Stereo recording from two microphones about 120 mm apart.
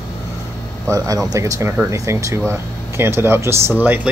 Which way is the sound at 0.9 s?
30° right (ahead or behind).